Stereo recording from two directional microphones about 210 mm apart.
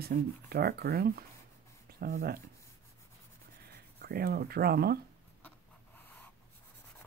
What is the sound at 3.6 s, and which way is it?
Speech, 50° right (ahead or behind).